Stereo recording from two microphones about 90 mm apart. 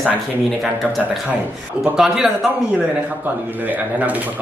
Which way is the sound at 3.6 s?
20° right (ahead or behind).